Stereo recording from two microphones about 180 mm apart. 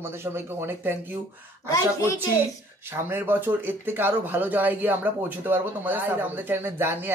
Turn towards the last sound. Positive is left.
turn(degrees=-10)  # may be behind; listen again after turning